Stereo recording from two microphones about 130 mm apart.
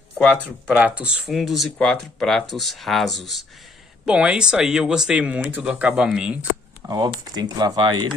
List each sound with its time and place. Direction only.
0.2 s speech: 10° left (ahead or behind)
0.7 s speech: 10° right (ahead or behind)
6.9 s speech: 35° right (ahead or behind)